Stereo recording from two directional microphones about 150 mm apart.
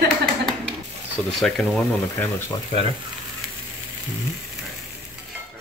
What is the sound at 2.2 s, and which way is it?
Speech, 15° left (ahead or behind).